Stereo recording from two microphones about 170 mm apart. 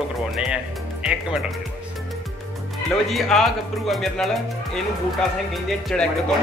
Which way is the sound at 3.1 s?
Centre (ahead or behind).